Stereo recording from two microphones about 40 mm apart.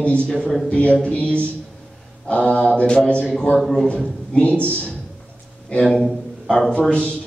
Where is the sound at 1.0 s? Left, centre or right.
Left.